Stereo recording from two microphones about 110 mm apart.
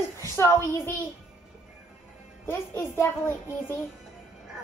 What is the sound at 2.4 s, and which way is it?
A child's voice, 25° left (ahead or behind).